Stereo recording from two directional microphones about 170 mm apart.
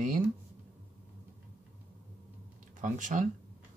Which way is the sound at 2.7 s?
50° right (ahead or behind).